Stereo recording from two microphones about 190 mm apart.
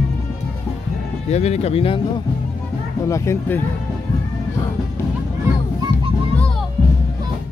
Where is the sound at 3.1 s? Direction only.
15° left (ahead or behind).